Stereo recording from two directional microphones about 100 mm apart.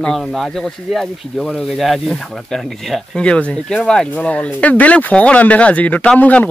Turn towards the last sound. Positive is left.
turn(degrees=15)  # may be behind; listen again after turning